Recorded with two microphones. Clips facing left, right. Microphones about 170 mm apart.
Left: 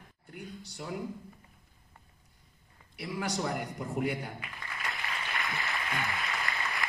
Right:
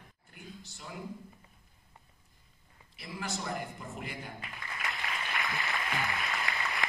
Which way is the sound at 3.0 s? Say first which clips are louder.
Left 6 dB; 65° left (ahead or behind).